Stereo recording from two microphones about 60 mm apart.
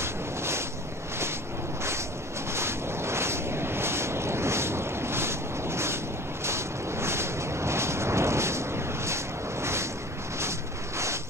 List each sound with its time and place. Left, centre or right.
0.0 s boat: right
2.5 s wind: right
6.4 s a sound: right